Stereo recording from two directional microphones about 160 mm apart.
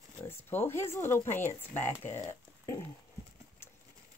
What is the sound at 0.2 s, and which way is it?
A woman's voice, 15° left (ahead or behind).